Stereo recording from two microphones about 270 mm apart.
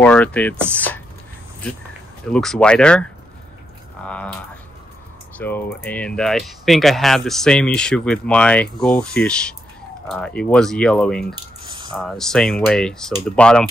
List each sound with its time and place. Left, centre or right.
0.0 s speech: centre
2.3 s speech: centre
5.4 s speech: centre
11.3 s drip: centre
11.9 s speech: centre